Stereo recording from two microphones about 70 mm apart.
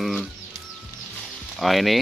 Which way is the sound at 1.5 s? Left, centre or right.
Centre.